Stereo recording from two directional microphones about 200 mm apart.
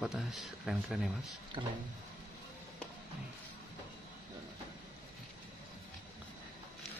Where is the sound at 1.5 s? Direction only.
25° right (ahead or behind).